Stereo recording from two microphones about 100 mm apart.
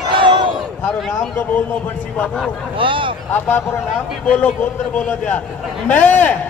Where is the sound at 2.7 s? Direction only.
60° right (ahead or behind).